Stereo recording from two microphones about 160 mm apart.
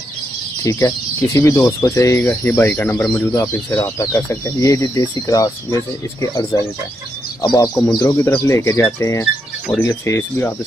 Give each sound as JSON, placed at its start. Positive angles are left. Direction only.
{"t": 0.7, "sound": "speech", "side_deg": 20}